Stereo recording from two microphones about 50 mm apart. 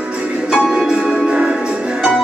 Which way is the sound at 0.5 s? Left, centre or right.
Centre.